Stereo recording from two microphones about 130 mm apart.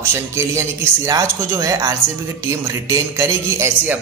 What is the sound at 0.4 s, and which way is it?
Speech, 25° right (ahead or behind).